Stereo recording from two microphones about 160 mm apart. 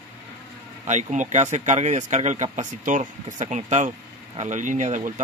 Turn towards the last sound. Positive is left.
turn(degrees=-50)  # may be behind; listen again after turning